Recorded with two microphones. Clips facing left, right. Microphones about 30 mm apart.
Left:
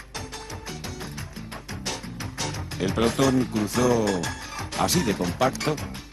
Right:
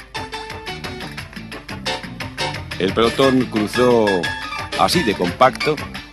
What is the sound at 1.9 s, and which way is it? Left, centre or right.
Speech, right.